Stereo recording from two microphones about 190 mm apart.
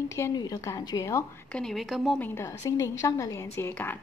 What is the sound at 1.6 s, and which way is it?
A woman's voice, centre (ahead or behind).